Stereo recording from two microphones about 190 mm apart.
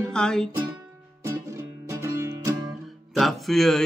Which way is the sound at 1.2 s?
15° right (ahead or behind).